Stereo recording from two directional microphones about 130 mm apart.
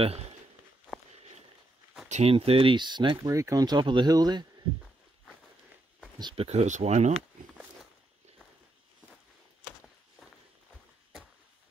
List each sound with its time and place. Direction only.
2.0 s speech: 65° right (ahead or behind)
2.3 s speech: 45° right (ahead or behind)
3.3 s speech: 25° right (ahead or behind)
6.3 s speech: 55° right (ahead or behind)